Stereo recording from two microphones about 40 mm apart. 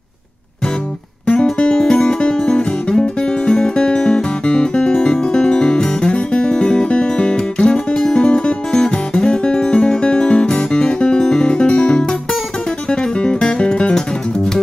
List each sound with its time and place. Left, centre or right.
1.2 s music: left